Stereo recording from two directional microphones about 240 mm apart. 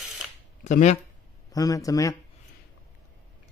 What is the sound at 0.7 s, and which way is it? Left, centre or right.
Speech, left.